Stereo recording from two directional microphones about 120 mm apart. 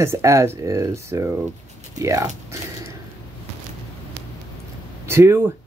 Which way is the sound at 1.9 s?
25° right (ahead or behind).